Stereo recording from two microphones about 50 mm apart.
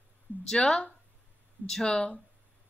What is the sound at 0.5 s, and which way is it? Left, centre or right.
A woman's voice, centre.